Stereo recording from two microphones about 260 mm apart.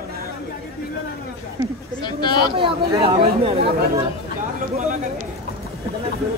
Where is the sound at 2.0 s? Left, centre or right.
Centre.